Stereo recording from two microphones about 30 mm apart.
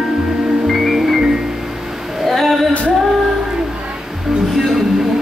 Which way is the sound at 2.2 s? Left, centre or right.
Centre.